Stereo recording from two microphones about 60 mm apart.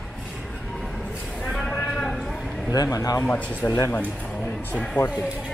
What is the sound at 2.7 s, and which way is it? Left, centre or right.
Speech, left.